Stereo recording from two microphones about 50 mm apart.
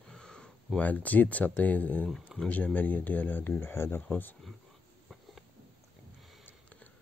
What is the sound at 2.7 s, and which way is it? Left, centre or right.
Speech, left.